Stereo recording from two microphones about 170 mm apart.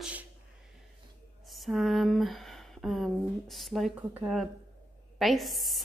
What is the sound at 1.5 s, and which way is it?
A woman's voice, centre (ahead or behind).